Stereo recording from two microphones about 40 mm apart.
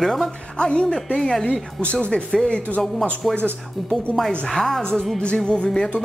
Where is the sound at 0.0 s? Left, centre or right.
Centre.